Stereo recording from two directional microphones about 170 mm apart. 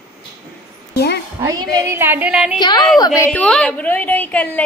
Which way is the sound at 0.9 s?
70° left (ahead or behind).